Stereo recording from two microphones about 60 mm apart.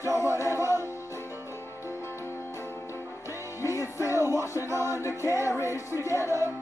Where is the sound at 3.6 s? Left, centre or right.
Left.